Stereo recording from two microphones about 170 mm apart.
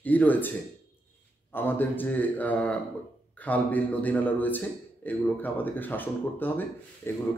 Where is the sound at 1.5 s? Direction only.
10° left (ahead or behind).